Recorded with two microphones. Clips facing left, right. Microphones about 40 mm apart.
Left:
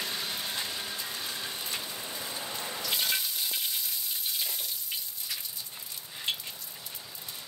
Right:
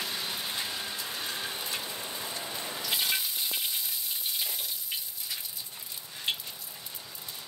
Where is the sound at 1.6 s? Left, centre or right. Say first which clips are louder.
Right 1 dB; centre.